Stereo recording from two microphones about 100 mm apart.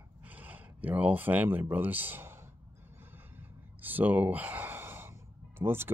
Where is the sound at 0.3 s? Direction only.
15° right (ahead or behind).